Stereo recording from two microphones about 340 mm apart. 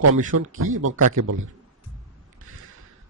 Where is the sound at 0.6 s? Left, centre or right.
Right.